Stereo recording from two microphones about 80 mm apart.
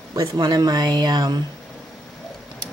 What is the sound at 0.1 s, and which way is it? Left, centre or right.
Speech, right.